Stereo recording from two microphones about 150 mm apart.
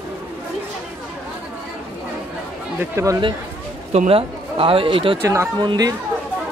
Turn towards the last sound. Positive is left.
turn(degrees=-25)  # may be behind; listen again after turning